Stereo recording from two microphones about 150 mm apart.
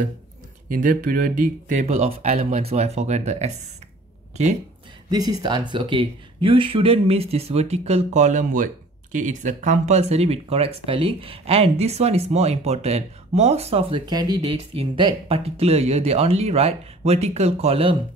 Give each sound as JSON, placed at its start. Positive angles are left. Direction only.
{"t": 0.7, "sound": "speech", "side_deg": -65}
{"t": 5.1, "sound": "speech", "side_deg": -25}